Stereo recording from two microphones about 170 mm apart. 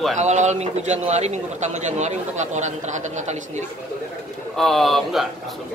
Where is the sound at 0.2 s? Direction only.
40° right (ahead or behind).